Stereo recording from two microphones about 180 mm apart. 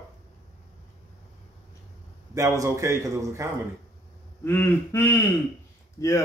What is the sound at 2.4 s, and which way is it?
A man's voice, 15° right (ahead or behind).